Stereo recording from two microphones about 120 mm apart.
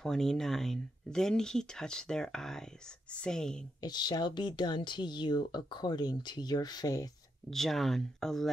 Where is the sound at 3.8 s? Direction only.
35° left (ahead or behind).